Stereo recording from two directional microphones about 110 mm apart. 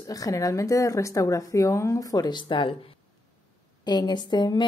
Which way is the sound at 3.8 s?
40° left (ahead or behind).